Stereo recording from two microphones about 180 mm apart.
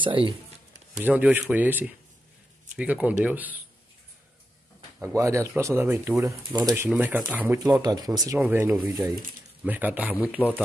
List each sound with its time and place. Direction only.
0.0 s speech: 30° right (ahead or behind)
1.0 s speech: 10° right (ahead or behind)
4.9 s speech: 15° right (ahead or behind)
6.7 s speech: 10° right (ahead or behind)